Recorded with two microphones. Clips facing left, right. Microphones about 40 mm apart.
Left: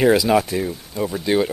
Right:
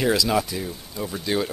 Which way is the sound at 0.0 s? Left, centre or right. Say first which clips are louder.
Left 6 dB; left.